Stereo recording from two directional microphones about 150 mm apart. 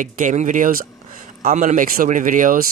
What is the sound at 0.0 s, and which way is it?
Speech, 60° right (ahead or behind).